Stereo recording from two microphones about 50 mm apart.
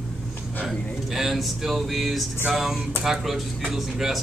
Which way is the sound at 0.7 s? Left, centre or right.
Centre.